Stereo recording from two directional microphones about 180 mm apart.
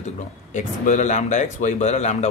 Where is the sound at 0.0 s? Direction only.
45° left (ahead or behind).